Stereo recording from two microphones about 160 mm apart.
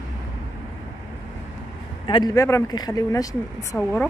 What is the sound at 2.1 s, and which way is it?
Speech, 25° left (ahead or behind).